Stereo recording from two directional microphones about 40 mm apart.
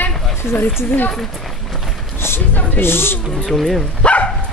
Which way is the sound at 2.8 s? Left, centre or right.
Left.